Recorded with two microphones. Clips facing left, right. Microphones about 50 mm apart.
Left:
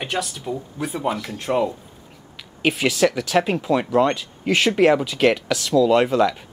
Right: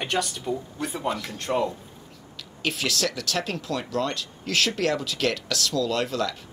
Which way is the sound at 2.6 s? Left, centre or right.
Centre.